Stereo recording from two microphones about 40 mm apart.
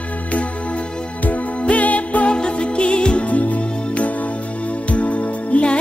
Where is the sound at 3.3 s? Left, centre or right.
Left.